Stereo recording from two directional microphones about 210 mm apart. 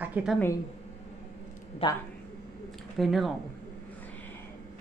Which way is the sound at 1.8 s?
25° left (ahead or behind).